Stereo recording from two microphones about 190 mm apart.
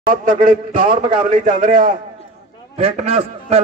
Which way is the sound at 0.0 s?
45° right (ahead or behind).